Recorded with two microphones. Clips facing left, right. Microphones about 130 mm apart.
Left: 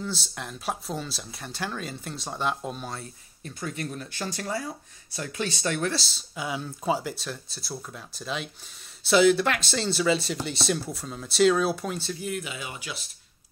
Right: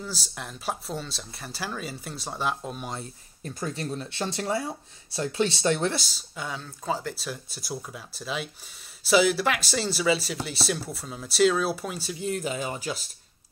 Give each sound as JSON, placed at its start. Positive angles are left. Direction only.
{"t": 0.0, "sound": "speech", "side_deg": -5}
{"t": 3.4, "sound": "speech", "side_deg": -35}
{"t": 6.3, "sound": "speech", "side_deg": 5}
{"t": 7.2, "sound": "speech", "side_deg": -10}
{"t": 12.2, "sound": "speech", "side_deg": -35}